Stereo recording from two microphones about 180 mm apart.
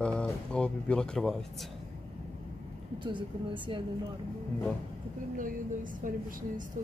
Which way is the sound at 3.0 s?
25° right (ahead or behind).